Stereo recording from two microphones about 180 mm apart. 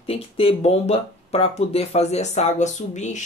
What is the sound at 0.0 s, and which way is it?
Speech, 30° left (ahead or behind).